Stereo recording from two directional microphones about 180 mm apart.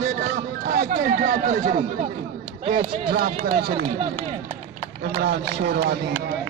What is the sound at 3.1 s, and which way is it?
Speech, 55° right (ahead or behind).